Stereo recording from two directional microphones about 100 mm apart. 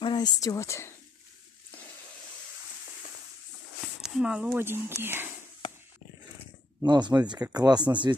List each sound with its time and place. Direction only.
0.0 s speech: 45° left (ahead or behind); by 0.9 s 30° left (ahead or behind)
4.0 s speech: 10° right (ahead or behind)
4.5 s speech: 20° right (ahead or behind)
6.8 s speech: 45° right (ahead or behind)